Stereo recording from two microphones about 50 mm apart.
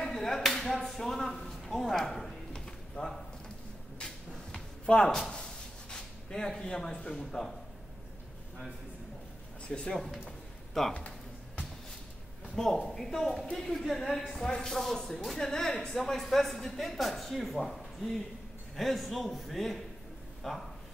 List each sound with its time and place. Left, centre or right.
0.0 s speech: centre
2.5 s a sound: centre
4.8 s speech: centre
5.3 s a sound: centre
6.7 s a woman's voice: centre
9.7 s speech: centre
9.9 s speech: centre
10.9 s a sound: left
12.6 s a woman's voice: centre